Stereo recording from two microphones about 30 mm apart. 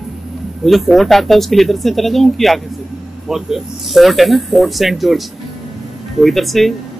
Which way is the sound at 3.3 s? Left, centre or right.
Centre.